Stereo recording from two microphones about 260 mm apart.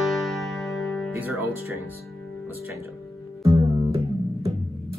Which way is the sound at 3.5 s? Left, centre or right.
Centre.